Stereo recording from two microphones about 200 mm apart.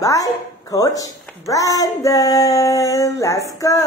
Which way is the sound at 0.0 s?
15° left (ahead or behind).